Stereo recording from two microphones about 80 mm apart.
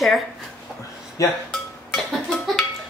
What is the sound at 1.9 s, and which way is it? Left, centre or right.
Music, centre.